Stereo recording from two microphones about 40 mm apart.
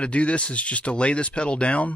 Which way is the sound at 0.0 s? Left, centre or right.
Left.